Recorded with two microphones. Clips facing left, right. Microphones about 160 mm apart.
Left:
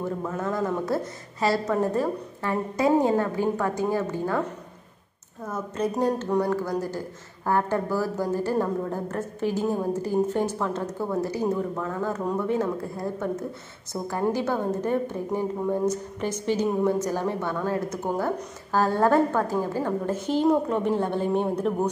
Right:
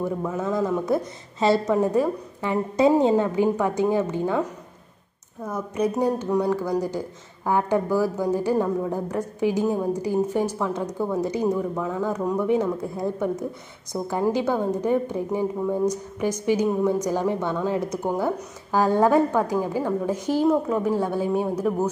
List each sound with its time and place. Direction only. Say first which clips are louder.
0.0 s a woman's voice: right 3 dB; 10° right (ahead or behind)
5.5 s a woman's voice: right 3 dB; 10° right (ahead or behind)